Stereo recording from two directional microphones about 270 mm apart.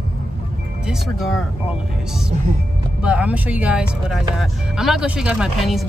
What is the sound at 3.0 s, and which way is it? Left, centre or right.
Speech, centre.